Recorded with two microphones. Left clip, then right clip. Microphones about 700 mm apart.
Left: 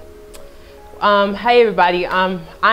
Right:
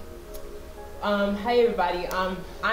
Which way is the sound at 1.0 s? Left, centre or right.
Left.